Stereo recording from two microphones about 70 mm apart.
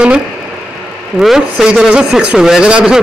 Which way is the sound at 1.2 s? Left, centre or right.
Centre.